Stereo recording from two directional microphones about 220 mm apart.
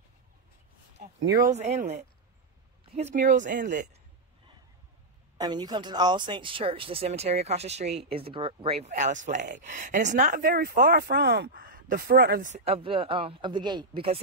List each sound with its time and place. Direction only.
1.4 s speech: 30° right (ahead or behind)
5.4 s speech: 20° right (ahead or behind)